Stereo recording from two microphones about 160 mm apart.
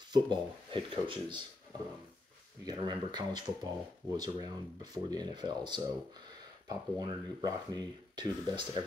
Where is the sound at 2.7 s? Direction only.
25° right (ahead or behind).